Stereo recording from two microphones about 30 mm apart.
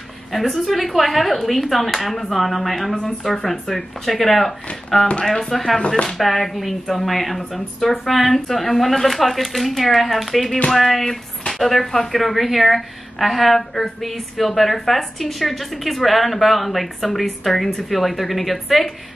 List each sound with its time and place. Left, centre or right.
0.4 s a woman's voice: centre